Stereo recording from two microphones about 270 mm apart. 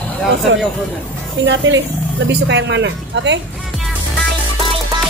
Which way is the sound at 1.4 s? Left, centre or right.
Right.